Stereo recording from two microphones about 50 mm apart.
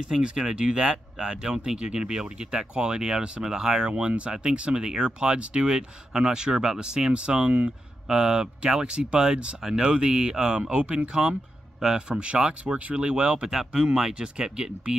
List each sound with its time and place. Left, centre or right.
0.1 s speech: centre
13.5 s speech: centre